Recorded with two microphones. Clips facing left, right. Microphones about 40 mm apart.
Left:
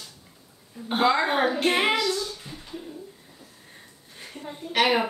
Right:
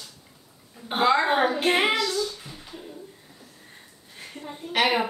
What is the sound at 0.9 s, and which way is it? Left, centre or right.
A child's voice, centre.